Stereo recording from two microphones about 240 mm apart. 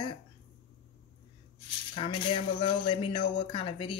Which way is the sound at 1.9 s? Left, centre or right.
Left.